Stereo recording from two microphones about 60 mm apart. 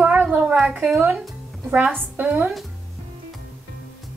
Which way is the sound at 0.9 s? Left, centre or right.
Right.